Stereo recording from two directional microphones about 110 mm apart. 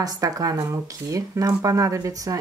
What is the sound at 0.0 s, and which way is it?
Speech, 30° right (ahead or behind).